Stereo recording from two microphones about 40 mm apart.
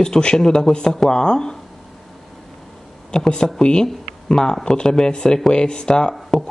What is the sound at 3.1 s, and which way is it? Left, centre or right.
Speech, centre.